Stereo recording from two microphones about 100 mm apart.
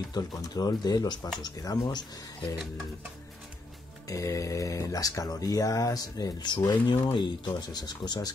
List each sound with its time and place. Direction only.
0.1 s speech: 40° left (ahead or behind)
4.1 s speech: 35° left (ahead or behind)